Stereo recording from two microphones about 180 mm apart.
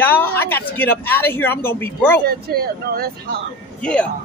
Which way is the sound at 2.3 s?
60° right (ahead or behind).